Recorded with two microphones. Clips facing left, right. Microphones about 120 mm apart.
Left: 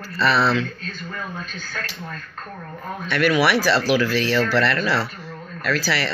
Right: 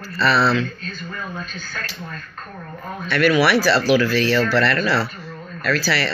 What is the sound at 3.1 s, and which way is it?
Speech, 20° left (ahead or behind).